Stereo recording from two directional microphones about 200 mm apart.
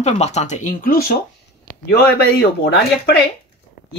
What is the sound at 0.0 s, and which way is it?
Speech, 35° left (ahead or behind).